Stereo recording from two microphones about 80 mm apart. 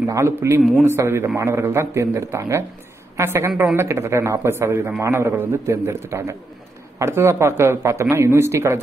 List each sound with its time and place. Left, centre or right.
0.0 s speech: right
0.6 s speech: centre
0.8 s speech: right